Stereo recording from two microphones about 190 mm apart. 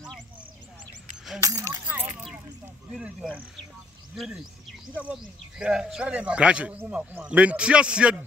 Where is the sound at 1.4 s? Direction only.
15° right (ahead or behind).